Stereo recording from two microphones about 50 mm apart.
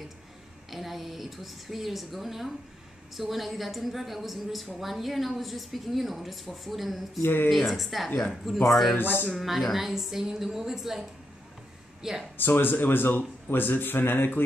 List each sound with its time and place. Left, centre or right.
0.7 s a woman's voice: centre
7.2 s speech: left
7.4 s a woman's voice: centre
8.9 s speech: left
9.3 s a woman's voice: centre
12.4 s speech: left